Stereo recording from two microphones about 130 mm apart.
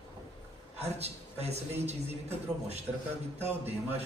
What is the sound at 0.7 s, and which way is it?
A man's voice, 55° right (ahead or behind).